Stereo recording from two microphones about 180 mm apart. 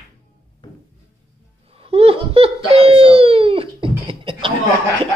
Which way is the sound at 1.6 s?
30° right (ahead or behind).